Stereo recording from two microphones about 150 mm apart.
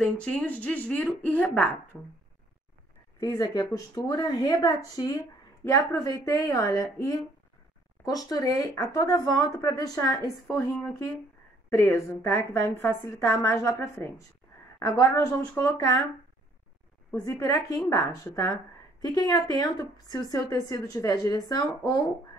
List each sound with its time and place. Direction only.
0.0 s a woman's voice: 5° left (ahead or behind)
3.2 s a woman's voice: 25° left (ahead or behind)
17.2 s a woman's voice: 20° left (ahead or behind)